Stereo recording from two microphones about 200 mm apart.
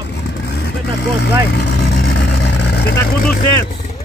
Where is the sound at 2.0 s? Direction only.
60° left (ahead or behind).